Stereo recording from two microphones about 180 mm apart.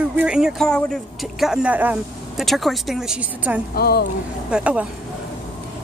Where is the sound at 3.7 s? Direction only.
60° left (ahead or behind).